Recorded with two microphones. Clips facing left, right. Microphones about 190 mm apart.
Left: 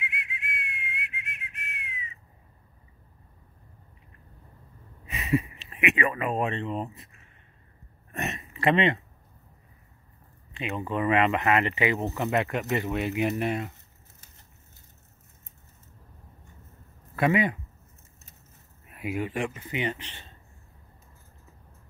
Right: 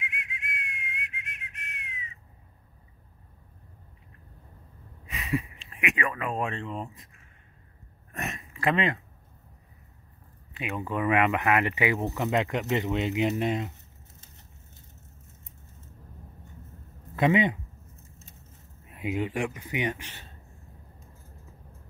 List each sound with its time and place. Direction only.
0.0 s whistling: 5° left (ahead or behind)
5.0 s speech: centre (ahead or behind)
8.1 s a sound: centre (ahead or behind)
10.5 s a sound: 10° right (ahead or behind)
11.0 s speech: 10° right (ahead or behind)
17.1 s speech: 20° right (ahead or behind)
18.9 s speech: 20° right (ahead or behind)